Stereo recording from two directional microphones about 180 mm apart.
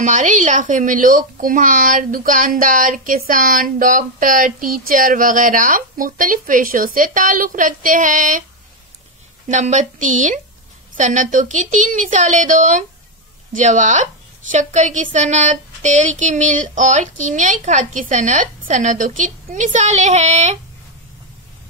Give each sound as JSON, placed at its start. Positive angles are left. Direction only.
{"t": 0.0, "sound": "speech", "side_deg": -45}
{"t": 9.5, "sound": "speech", "side_deg": -40}